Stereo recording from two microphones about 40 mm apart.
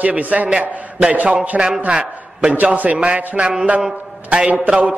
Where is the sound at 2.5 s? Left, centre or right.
Right.